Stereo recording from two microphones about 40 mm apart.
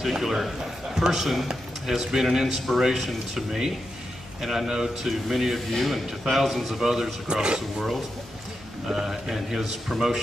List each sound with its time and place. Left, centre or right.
0.1 s a man's voice: centre